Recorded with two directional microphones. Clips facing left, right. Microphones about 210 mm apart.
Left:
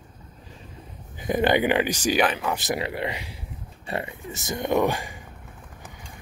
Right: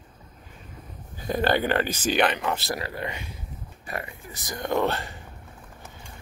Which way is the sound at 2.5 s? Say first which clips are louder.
Left 3 dB; 20° left (ahead or behind).